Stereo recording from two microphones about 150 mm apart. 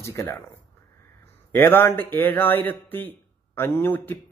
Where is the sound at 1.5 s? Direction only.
15° left (ahead or behind).